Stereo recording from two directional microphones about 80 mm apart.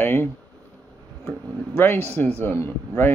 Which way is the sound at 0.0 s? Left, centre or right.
Left.